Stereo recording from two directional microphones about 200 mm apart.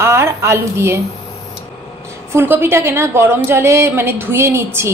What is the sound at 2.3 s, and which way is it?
A woman's voice, 10° right (ahead or behind).